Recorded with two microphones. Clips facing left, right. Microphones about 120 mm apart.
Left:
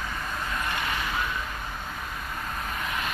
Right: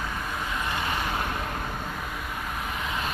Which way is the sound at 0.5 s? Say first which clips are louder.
Right 1 dB; 15° right (ahead or behind).